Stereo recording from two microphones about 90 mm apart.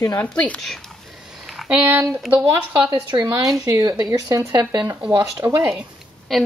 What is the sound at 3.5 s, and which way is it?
Speech, 40° right (ahead or behind).